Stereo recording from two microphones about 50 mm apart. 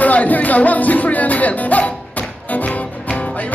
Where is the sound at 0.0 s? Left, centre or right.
Left.